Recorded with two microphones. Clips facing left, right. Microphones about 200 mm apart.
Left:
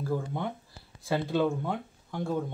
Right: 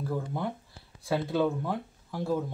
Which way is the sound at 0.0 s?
Centre (ahead or behind).